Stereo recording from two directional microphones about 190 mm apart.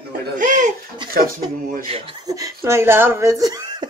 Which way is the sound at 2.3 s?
15° right (ahead or behind).